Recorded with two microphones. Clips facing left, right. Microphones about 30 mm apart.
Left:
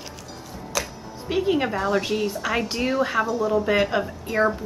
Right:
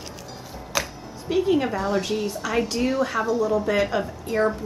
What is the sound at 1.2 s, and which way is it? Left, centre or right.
A woman's voice, centre.